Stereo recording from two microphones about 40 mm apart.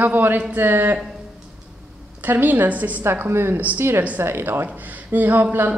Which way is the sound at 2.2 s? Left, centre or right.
Right.